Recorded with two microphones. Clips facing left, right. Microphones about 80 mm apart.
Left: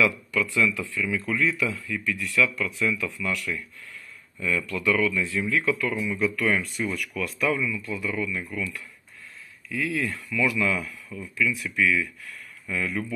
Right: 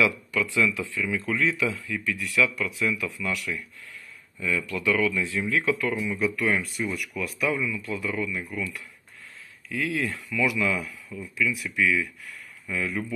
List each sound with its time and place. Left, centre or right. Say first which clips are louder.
0.0 s speech: even; right
7.5 s speech: even; right